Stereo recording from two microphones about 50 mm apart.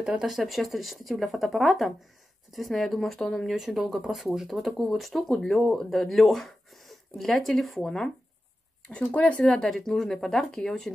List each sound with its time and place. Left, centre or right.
0.0 s speech: centre
0.3 s speech: centre
3.5 s speech: centre
9.1 s speech: left
9.4 s speech: centre